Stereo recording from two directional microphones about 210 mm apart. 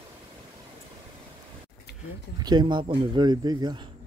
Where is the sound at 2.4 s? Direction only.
20° right (ahead or behind).